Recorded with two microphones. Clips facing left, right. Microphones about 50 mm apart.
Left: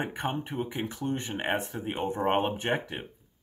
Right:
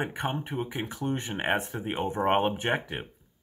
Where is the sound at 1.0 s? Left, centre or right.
Centre.